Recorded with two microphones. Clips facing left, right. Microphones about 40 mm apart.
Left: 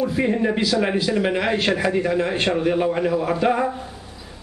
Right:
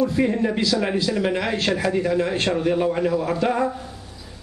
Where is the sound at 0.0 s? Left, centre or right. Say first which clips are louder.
Even; centre.